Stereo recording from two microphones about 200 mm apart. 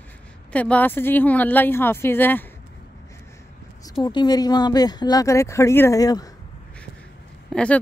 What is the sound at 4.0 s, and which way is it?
Speech, 20° left (ahead or behind).